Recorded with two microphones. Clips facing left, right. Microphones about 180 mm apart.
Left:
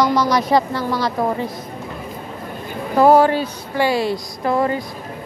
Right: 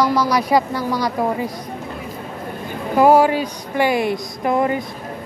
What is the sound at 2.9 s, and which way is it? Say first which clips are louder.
Speech: even; 10° right (ahead or behind).